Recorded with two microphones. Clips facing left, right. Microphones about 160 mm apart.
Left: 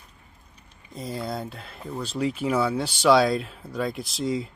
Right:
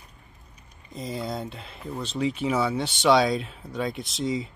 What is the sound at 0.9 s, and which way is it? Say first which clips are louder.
Speech: even; centre (ahead or behind).